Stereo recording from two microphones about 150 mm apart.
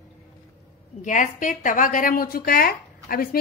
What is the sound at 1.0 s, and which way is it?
A woman's voice, 60° left (ahead or behind).